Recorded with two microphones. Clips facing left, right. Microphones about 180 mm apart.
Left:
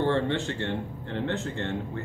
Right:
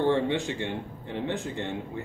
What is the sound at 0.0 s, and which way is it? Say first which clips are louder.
Speech: right 1 dB; 15° right (ahead or behind).